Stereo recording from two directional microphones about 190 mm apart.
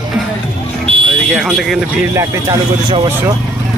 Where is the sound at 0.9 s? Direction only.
30° right (ahead or behind).